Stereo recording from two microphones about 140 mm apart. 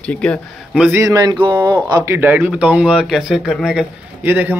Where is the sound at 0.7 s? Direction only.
5° right (ahead or behind).